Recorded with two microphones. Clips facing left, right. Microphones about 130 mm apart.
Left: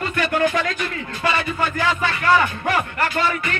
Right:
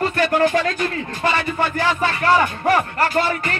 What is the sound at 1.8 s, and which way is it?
Music, 35° right (ahead or behind).